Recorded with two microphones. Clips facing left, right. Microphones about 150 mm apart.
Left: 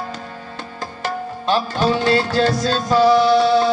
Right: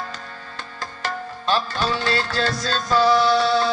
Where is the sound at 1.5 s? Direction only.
15° left (ahead or behind).